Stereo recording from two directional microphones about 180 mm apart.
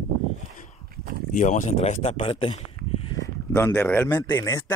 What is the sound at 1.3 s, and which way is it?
Speech, 40° left (ahead or behind).